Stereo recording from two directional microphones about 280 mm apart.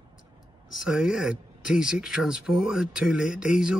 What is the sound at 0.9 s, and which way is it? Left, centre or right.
Speech, centre.